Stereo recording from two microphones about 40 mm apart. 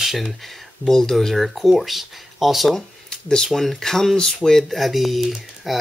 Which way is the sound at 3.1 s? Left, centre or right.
Centre.